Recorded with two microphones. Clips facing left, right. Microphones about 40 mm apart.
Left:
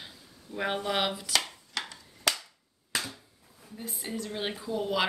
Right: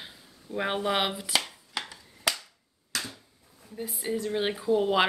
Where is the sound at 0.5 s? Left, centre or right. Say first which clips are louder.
Right 2 dB; centre.